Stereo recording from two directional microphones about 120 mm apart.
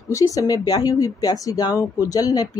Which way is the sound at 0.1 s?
30° left (ahead or behind).